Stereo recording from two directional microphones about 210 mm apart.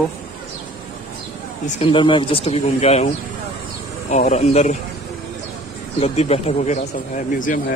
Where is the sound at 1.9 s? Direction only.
25° left (ahead or behind).